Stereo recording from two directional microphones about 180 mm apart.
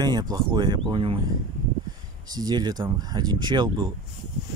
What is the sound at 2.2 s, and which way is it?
Speech, 20° right (ahead or behind).